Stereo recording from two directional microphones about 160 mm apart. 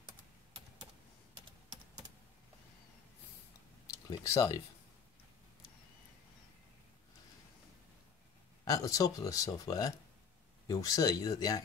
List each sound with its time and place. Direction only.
4.1 s speech: 20° left (ahead or behind)
8.6 s speech: 20° left (ahead or behind)